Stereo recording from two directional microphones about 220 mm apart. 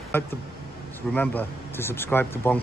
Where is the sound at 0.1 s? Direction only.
10° left (ahead or behind).